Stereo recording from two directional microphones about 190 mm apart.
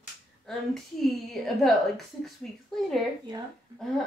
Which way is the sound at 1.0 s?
Centre (ahead or behind).